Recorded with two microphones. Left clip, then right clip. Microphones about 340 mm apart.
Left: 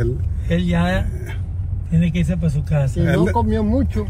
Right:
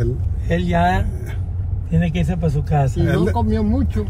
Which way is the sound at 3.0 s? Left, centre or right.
Centre.